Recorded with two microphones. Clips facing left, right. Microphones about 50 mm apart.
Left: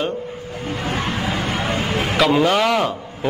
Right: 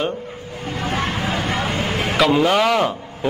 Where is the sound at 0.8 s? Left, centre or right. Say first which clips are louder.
Right 1 dB; right.